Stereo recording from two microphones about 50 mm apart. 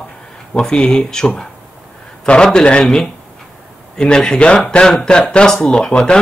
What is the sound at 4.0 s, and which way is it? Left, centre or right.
Speech, centre.